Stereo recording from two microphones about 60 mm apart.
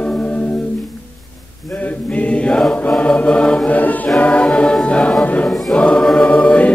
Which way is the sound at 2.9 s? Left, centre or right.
Centre.